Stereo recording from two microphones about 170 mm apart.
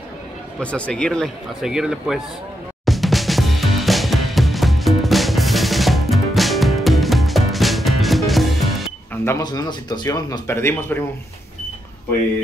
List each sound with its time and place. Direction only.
0.6 s a man's voice: 5° left (ahead or behind)
2.8 s music: centre (ahead or behind)
9.2 s speech: 20° left (ahead or behind)